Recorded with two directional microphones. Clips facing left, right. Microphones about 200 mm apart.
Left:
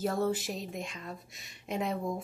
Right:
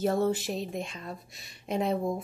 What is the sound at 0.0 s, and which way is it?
Speech, 25° right (ahead or behind).